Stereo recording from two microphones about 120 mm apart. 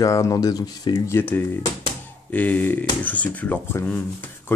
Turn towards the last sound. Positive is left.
turn(degrees=15)  # may be behind; listen again after turning